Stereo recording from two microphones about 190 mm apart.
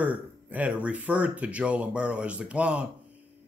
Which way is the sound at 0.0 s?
10° right (ahead or behind).